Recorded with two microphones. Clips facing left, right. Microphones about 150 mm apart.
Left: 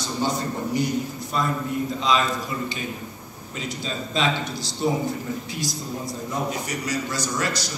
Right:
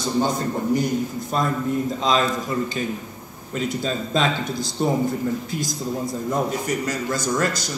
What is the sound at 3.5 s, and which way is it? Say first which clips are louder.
A man's voice: right 7 dB; 50° right (ahead or behind).